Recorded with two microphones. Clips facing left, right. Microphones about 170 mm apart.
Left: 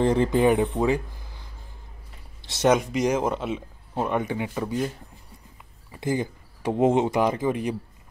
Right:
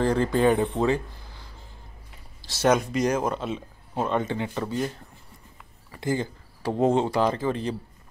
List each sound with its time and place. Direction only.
0.0 s speech: 20° left (ahead or behind)
5.9 s speech: 20° left (ahead or behind)